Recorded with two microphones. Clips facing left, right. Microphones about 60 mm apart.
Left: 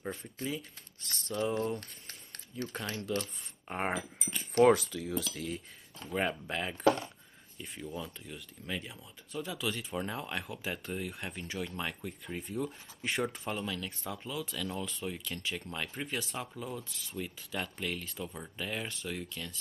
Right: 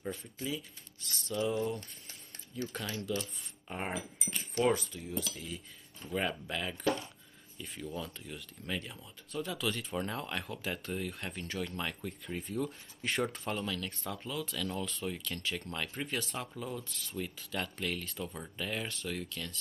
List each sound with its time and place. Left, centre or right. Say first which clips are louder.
0.0 s speech: left 1 dB; left
1.0 s a sound: even; left
1.8 s a sound: left 1 dB; left
2.9 s speech: left 1 dB; left
4.7 s speech: left 3 dB; left
5.3 s speech: left 5 dB; left
6.1 s speech: left 2 dB; left